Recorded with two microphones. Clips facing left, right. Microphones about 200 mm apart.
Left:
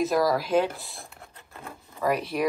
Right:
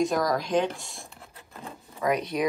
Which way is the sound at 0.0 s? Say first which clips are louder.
Left 2 dB; 5° left (ahead or behind).